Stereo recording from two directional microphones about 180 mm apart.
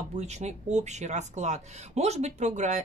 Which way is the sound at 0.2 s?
40° right (ahead or behind).